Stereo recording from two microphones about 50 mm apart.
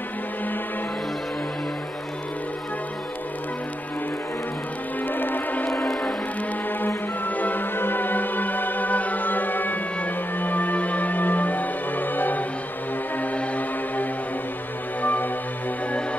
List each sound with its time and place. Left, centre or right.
5.0 s music: left
7.2 s music: left